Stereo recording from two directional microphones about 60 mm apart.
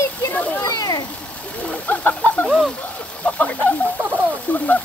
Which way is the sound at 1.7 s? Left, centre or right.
Left.